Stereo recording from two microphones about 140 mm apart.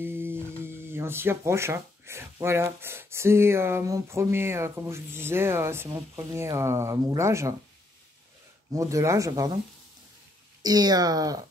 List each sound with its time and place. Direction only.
0.0 s speech: 15° right (ahead or behind)
8.7 s speech: 20° right (ahead or behind)
10.6 s speech: 30° right (ahead or behind)